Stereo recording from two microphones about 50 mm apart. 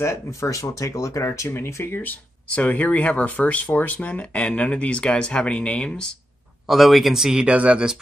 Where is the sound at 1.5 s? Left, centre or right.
Left.